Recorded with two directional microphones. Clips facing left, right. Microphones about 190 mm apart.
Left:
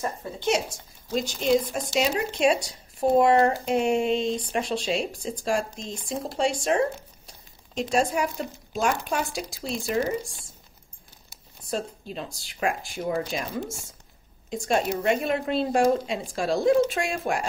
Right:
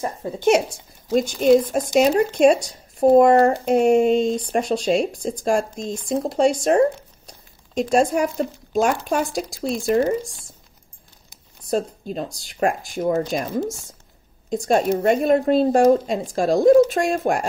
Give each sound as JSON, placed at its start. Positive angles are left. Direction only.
{"t": 0.4, "sound": "speech", "side_deg": -60}
{"t": 7.9, "sound": "speech", "side_deg": -45}
{"t": 11.7, "sound": "a woman's voice", "side_deg": -40}